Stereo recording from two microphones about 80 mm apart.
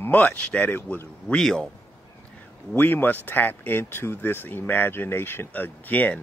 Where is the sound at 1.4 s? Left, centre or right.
Centre.